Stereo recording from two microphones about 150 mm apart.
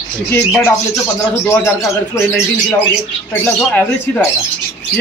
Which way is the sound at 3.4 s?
15° left (ahead or behind).